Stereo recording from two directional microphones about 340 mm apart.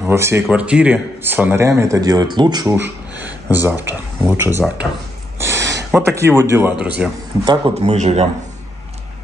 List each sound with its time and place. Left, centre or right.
0.0 s a man's voice: centre
5.4 s a sound: centre
5.9 s a man's voice: centre
7.6 s a man's voice: centre